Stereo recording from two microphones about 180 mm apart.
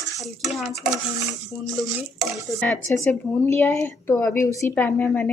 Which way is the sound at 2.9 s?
15° left (ahead or behind).